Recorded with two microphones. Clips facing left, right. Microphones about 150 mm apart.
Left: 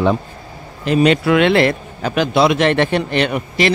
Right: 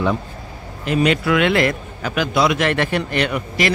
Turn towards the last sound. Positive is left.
turn(degrees=25)  # may be behind; listen again after turning